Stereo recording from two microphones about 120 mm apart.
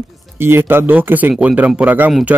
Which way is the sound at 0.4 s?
20° right (ahead or behind).